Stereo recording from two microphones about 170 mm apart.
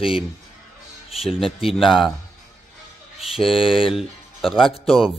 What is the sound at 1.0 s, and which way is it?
Speech, centre (ahead or behind).